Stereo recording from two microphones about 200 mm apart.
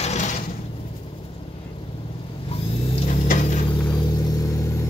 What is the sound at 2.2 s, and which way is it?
Vehicle, 25° left (ahead or behind).